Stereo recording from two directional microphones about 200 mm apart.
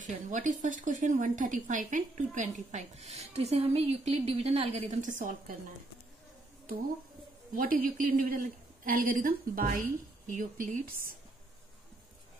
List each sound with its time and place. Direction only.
0.0 s speech: 40° right (ahead or behind)
7.5 s a woman's voice: 45° right (ahead or behind)